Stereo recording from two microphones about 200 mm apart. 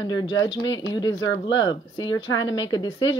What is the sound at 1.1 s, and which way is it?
Speech, 70° left (ahead or behind).